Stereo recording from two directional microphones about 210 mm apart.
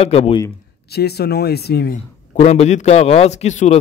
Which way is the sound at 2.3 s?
30° left (ahead or behind).